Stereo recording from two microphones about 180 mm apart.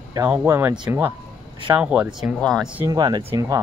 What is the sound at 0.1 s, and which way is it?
Speech, 15° right (ahead or behind).